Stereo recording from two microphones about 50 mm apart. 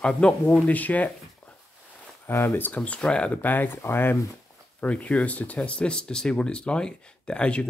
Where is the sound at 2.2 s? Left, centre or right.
Left.